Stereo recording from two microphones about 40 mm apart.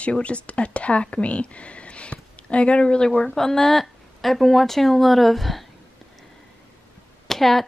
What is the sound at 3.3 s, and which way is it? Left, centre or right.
Speech, centre.